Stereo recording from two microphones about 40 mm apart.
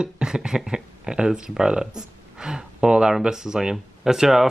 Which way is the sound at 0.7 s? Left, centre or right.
Right.